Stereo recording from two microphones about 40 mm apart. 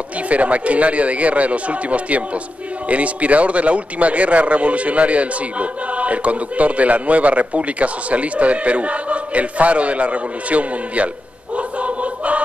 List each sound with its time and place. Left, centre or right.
0.3 s a man's voice: right
11.5 s choir: right